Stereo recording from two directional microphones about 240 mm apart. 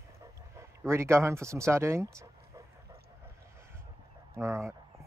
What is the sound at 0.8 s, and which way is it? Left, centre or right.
Speech, centre.